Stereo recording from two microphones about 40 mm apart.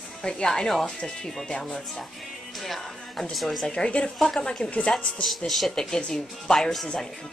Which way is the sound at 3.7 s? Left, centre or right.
Left.